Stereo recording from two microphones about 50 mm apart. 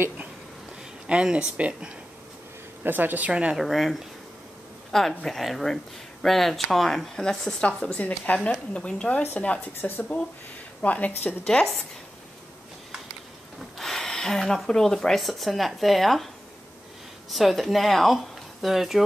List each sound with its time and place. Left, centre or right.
1.0 s speech: right
2.8 s speech: right
3.3 s speech: right
3.5 s speech: centre
8.0 s speech: left
8.7 s speech: left
9.8 s speech: left
10.8 s speech: left
11.4 s speech: centre
13.7 s speech: centre
17.3 s speech: centre